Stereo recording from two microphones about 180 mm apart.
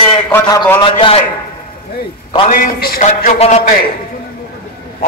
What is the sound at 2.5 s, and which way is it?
A man's voice, 50° left (ahead or behind).